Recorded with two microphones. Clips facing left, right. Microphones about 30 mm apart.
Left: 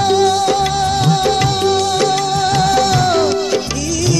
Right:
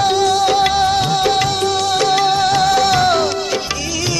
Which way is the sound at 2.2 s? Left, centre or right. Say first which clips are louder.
Right 2 dB; centre.